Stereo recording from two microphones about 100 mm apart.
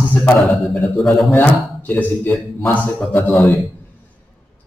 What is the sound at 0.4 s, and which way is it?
Speech, centre (ahead or behind).